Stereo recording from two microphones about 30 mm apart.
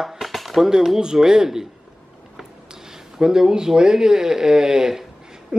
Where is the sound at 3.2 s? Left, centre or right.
Right.